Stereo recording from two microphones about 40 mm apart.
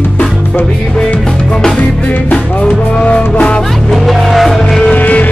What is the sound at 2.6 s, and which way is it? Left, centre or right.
Music, left.